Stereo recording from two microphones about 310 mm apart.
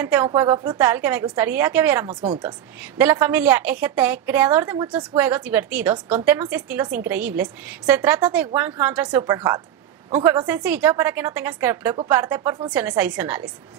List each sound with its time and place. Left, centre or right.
0.0 s a woman's voice: centre
2.8 s a woman's voice: centre